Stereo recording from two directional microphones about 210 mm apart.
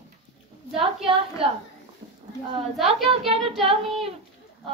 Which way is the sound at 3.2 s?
30° right (ahead or behind).